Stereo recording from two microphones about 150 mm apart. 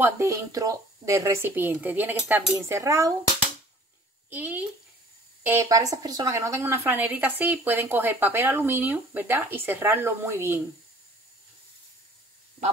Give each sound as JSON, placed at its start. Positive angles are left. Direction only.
{"t": 0.0, "sound": "a woman's voice", "side_deg": -20}
{"t": 4.3, "sound": "a woman's voice", "side_deg": -10}